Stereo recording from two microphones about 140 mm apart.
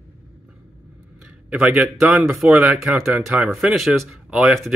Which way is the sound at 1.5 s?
10° right (ahead or behind).